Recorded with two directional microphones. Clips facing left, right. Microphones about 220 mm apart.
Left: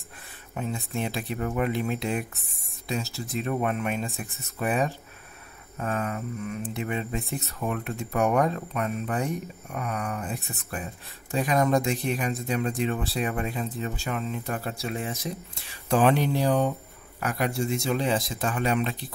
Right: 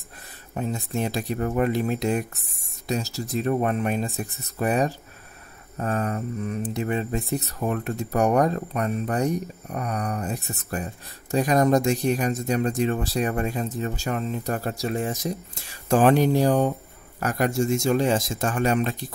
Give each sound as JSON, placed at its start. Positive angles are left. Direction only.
{"t": 0.6, "sound": "speech", "side_deg": -40}